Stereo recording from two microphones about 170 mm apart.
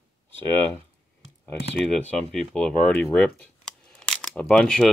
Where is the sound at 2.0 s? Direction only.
5° left (ahead or behind).